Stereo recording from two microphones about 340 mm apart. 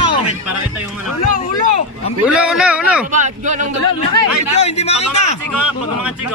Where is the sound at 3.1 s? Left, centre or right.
Right.